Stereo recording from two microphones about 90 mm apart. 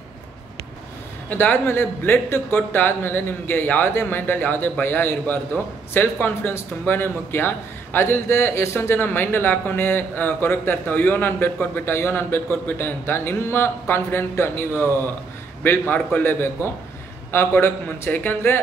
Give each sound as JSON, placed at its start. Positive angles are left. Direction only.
{"t": 1.3, "sound": "a man's voice", "side_deg": 20}